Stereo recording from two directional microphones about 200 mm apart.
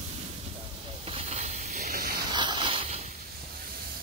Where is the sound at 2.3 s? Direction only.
20° right (ahead or behind).